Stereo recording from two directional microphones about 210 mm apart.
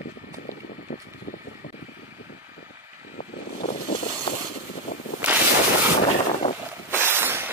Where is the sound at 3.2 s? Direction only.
45° left (ahead or behind).